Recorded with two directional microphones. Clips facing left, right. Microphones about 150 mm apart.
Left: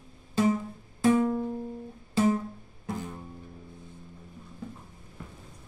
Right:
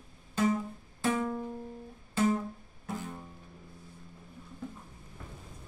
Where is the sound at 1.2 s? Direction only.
10° left (ahead or behind).